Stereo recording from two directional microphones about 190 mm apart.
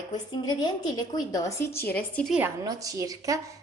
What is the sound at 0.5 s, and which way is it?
Speech, 20° left (ahead or behind).